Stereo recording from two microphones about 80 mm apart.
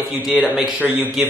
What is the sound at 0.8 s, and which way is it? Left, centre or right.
Speech, centre.